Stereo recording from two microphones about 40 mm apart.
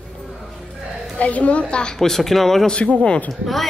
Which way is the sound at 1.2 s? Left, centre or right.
Left.